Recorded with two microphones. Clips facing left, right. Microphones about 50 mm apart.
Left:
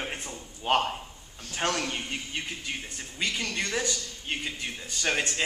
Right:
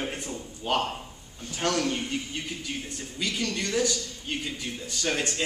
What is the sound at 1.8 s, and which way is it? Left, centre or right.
Speech, centre.